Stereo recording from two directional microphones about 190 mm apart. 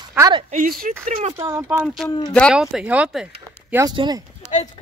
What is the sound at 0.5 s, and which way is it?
Speech, 45° right (ahead or behind).